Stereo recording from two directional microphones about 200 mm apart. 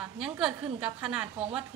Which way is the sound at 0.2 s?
5° right (ahead or behind).